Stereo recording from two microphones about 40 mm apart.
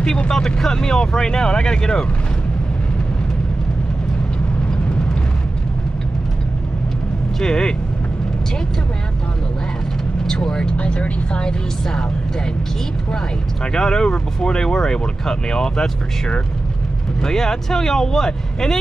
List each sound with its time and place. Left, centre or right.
0.3 s speech: centre
7.3 s speech: centre
10.2 s speech: centre
10.8 s speech: left
13.7 s speech: centre